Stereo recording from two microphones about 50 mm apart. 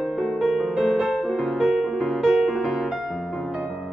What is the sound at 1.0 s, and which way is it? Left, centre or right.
Music, centre.